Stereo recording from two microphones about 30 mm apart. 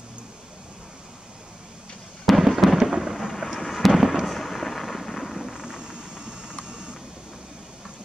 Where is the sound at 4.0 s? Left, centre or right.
Centre.